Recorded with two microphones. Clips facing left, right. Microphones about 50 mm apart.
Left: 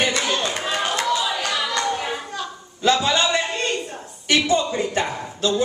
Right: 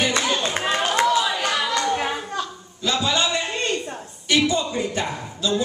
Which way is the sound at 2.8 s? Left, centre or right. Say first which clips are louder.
Left 5 dB; left.